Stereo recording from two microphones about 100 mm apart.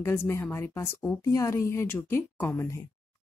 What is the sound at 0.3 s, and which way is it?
Speech, 30° left (ahead or behind).